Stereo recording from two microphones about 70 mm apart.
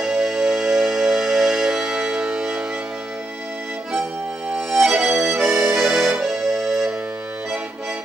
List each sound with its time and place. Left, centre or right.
0.0 s music: centre
4.6 s accordion: centre